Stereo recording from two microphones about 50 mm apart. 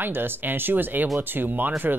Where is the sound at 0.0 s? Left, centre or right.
Right.